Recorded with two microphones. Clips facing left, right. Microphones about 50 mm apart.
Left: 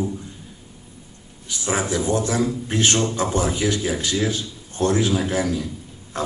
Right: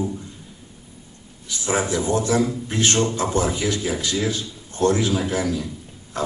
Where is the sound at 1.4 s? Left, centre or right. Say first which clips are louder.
Right 1 dB; left.